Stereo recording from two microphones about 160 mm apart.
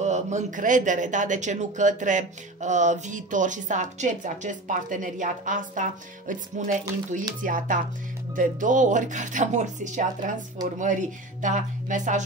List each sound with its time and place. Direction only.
0.0 s speech: 45° right (ahead or behind)